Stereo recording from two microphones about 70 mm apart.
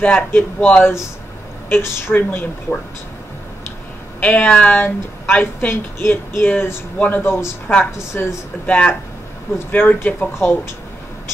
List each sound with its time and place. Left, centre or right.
0.0 s speech: left
1.7 s speech: left
4.2 s speech: left
8.6 s speech: centre
9.7 s speech: left